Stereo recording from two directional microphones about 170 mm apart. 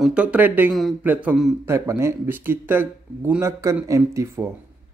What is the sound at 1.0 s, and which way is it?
Speech, 10° right (ahead or behind).